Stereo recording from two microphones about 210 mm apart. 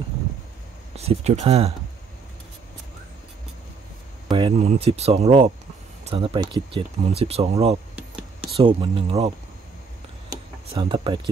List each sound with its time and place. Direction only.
0.9 s speech: 30° right (ahead or behind)
4.3 s a sound: 20° right (ahead or behind)
4.6 s speech: 30° right (ahead or behind)
7.9 s a sound: 5° right (ahead or behind)
8.5 s speech: 25° right (ahead or behind)
10.7 s speech: 25° right (ahead or behind)